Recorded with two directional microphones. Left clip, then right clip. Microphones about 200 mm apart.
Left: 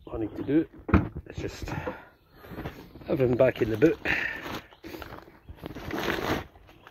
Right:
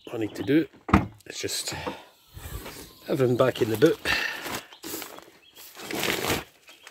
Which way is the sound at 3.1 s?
15° right (ahead or behind).